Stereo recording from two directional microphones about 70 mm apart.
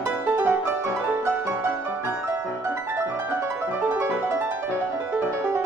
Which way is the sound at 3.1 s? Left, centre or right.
Right.